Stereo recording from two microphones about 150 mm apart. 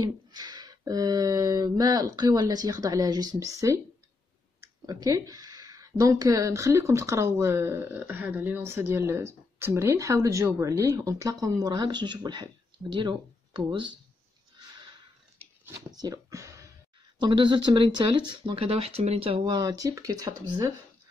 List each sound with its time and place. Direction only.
0.0 s speech: 25° right (ahead or behind)
15.9 s speech: 25° right (ahead or behind)
17.2 s speech: 35° right (ahead or behind)